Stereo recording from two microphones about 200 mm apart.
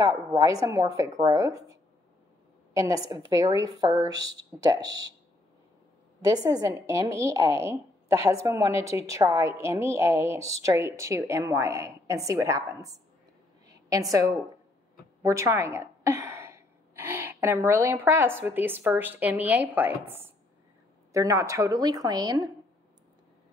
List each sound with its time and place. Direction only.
0.0 s a woman's voice: 15° right (ahead or behind)
6.2 s a woman's voice: 20° right (ahead or behind)
13.7 s a sound: 15° right (ahead or behind)
18.4 s a woman's voice: 10° right (ahead or behind)